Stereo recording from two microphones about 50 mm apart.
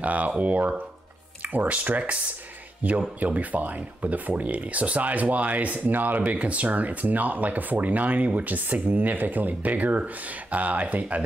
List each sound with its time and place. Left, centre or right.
0.0 s speech: right